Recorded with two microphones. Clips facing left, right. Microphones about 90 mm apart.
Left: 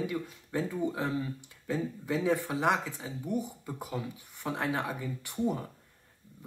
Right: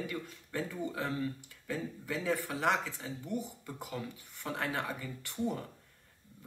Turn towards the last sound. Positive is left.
turn(degrees=15)  # may be behind; listen again after turning